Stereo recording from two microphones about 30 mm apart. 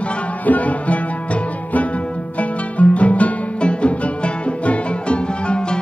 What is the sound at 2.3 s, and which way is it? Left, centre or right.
Music, left.